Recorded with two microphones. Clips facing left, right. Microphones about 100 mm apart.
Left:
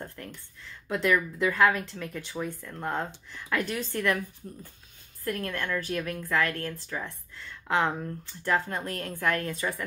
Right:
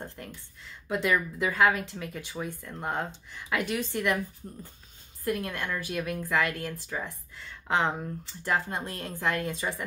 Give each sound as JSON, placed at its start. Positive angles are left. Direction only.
{"t": 0.0, "sound": "a sound", "side_deg": -20}
{"t": 0.8, "sound": "speech", "side_deg": -15}
{"t": 5.2, "sound": "speech", "side_deg": -15}